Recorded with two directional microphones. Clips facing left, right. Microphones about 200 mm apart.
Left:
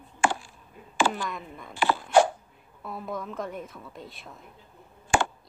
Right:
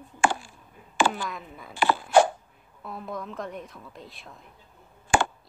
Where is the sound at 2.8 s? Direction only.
Centre (ahead or behind).